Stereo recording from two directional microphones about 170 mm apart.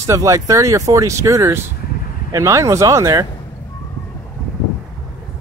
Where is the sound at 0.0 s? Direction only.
15° right (ahead or behind).